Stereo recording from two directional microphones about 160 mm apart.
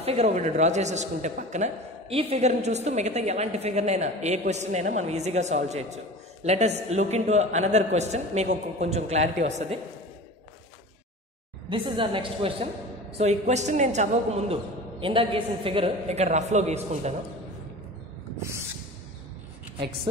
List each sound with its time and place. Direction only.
0.0 s a man's voice: 40° right (ahead or behind)
11.7 s a woman's voice: 30° right (ahead or behind)
13.2 s a man's voice: 45° right (ahead or behind)